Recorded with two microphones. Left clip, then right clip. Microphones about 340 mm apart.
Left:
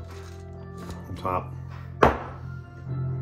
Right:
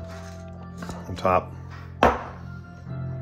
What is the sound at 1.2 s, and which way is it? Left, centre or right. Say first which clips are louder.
Speech: right 7 dB; right.